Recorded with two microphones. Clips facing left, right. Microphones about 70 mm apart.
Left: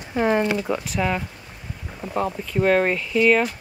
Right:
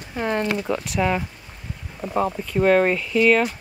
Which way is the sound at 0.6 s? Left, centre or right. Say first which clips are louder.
Right 1 dB; centre.